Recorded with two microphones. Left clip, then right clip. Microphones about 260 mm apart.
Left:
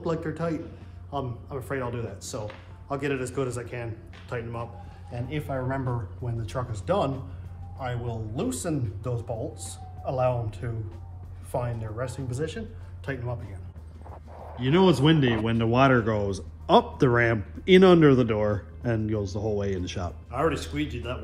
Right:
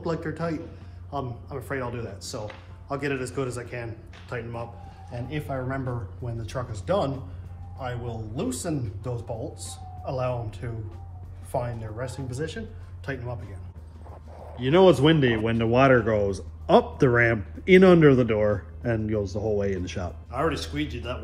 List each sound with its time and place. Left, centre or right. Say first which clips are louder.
0.0 s speech: even; centre
8.0 s speech: even; centre
11.5 s speech: right 1 dB; centre
14.6 s speech: right 4 dB; centre